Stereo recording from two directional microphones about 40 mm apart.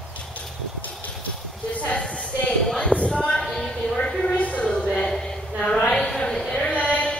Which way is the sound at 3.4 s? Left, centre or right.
Centre.